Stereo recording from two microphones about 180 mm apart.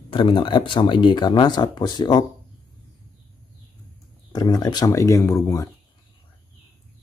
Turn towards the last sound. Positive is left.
turn(degrees=15)  # may be behind; listen again after turning